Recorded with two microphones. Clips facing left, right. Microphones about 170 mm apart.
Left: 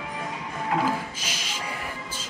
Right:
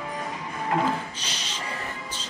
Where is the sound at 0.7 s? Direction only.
10° left (ahead or behind).